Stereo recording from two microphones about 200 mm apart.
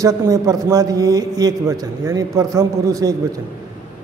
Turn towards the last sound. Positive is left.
turn(degrees=-15)  # may be behind; listen again after turning